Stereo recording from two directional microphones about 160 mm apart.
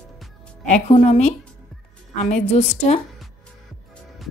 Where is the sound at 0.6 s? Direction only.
45° left (ahead or behind).